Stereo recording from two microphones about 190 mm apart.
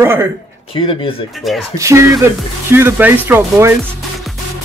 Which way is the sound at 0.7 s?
30° left (ahead or behind).